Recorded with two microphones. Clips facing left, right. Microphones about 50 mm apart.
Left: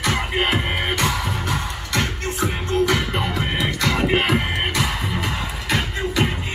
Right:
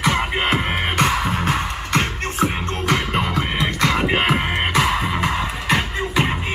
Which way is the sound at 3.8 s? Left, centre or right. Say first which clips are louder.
Right 1 dB; right.